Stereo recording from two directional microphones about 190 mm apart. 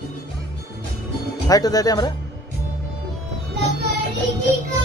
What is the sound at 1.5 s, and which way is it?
Speech, 20° left (ahead or behind).